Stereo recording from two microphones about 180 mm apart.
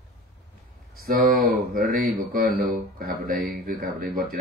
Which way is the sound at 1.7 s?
55° right (ahead or behind).